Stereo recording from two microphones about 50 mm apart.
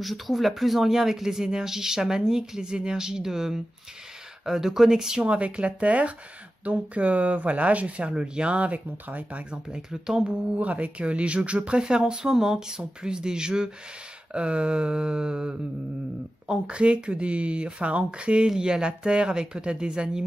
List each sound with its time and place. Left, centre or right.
0.0 s speech: centre
5.3 s speech: right
9.5 s speech: centre
10.5 s speech: right